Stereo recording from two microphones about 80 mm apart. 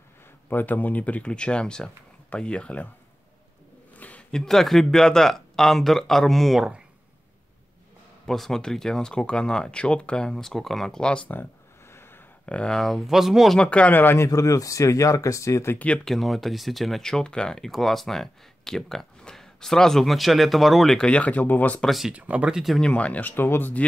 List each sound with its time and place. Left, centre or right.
0.5 s speech: left
3.9 s speech: centre
8.3 s speech: centre
11.2 s a sound: left
12.4 s speech: centre
13.6 s speech: centre
14.2 s speech: left
15.8 s speech: centre
21.1 s speech: centre
21.8 s speech: centre
22.1 s speech: centre
22.8 s speech: centre